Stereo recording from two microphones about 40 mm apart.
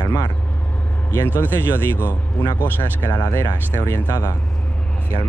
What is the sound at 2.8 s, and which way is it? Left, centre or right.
Speech, left.